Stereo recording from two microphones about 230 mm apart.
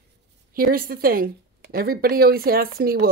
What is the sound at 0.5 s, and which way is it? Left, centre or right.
A woman's voice, right.